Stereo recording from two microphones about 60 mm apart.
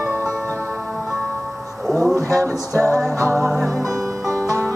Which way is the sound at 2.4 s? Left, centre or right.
Right.